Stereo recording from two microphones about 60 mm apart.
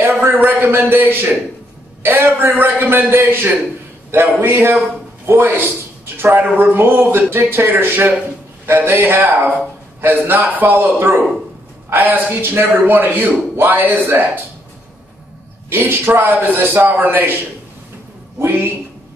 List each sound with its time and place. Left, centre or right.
0.0 s a man's voice: right
6.4 s a man's voice: right
10.5 s a man's voice: right
15.7 s a man's voice: right